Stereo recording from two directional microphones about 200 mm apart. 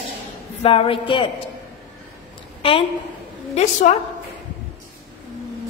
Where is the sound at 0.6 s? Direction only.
30° left (ahead or behind).